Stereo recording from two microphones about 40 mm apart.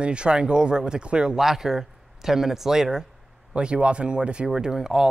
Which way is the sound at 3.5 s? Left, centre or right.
Right.